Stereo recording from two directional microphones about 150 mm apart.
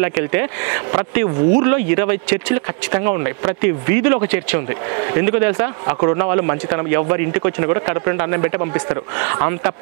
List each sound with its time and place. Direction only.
0.0 s speech: 15° right (ahead or behind)